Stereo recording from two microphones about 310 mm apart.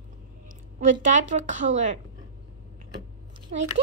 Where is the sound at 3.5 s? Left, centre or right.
Right.